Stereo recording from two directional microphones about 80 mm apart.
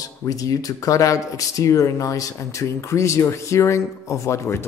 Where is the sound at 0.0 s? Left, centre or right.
Left.